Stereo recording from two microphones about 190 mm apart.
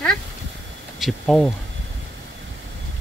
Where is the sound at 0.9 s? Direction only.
Centre (ahead or behind).